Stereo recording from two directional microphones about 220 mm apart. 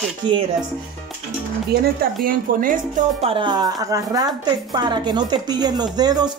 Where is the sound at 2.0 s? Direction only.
40° right (ahead or behind).